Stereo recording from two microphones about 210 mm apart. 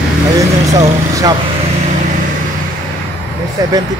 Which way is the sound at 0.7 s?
15° right (ahead or behind).